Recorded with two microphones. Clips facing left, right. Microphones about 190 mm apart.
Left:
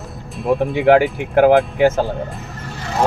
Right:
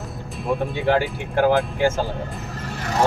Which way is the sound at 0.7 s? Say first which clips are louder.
Left 10 dB; 80° left.